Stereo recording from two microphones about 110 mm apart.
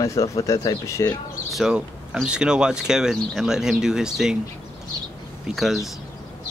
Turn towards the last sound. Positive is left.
turn(degrees=0)  # may be behind; listen again after turning